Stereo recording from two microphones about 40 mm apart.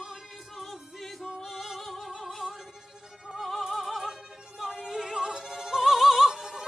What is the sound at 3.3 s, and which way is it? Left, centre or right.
Opera, centre.